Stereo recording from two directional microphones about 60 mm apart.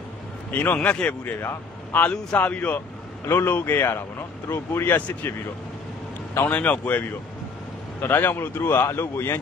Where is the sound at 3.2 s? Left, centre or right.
Left.